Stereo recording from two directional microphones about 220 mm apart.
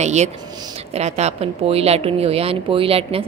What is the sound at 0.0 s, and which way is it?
Speech, 30° right (ahead or behind).